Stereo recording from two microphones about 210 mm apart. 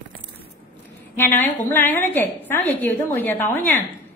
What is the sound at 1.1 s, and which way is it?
A woman's voice, 10° left (ahead or behind).